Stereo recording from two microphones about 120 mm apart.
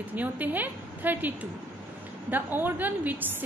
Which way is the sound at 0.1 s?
15° right (ahead or behind).